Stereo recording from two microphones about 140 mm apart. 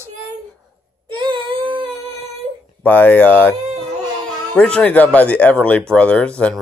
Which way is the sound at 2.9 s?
15° left (ahead or behind).